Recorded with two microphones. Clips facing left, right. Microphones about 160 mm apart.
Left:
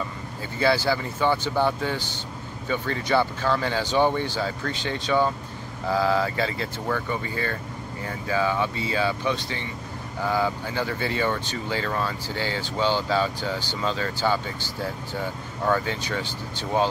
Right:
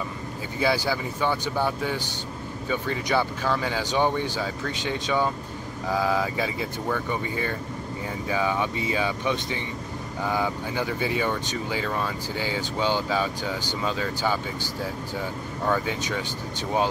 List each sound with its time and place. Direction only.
0.6 s speech: 10° right (ahead or behind)
15.6 s speech: 5° right (ahead or behind)